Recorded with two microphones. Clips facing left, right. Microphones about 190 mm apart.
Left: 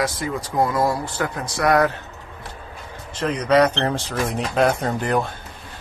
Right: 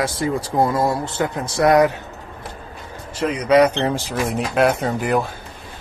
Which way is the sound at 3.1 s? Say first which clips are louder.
Right 2 dB; 10° right (ahead or behind).